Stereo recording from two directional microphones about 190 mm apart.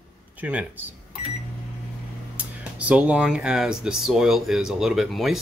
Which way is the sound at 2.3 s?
5° right (ahead or behind).